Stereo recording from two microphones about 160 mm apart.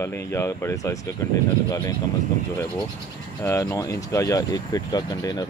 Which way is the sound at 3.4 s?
20° left (ahead or behind).